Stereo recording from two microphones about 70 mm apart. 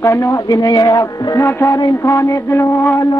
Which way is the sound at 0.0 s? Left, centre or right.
Left.